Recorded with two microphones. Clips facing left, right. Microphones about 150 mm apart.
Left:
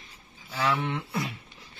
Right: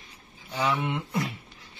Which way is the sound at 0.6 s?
10° right (ahead or behind).